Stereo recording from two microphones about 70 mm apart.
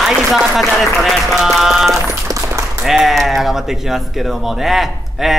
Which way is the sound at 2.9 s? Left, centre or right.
Centre.